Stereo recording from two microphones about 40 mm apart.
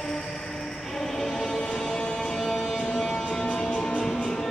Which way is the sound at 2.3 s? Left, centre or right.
Centre.